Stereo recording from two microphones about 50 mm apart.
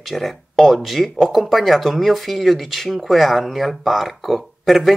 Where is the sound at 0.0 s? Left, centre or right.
Centre.